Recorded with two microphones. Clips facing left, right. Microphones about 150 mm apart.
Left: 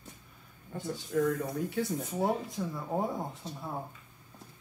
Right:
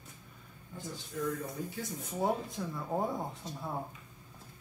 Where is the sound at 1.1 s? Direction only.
60° left (ahead or behind).